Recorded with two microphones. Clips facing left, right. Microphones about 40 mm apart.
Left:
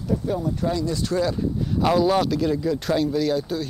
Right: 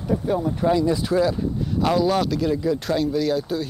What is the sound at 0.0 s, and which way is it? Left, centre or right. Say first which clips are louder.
Speech: right 2 dB; centre.